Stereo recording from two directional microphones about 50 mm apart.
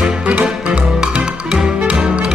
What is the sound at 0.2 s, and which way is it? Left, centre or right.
Music, right.